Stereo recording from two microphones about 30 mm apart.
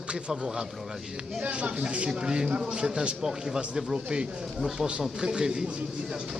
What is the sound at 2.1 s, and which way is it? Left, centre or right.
A man's voice, right.